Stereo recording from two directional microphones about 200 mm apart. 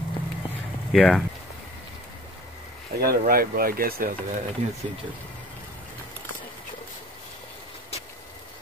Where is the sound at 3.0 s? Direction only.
50° right (ahead or behind).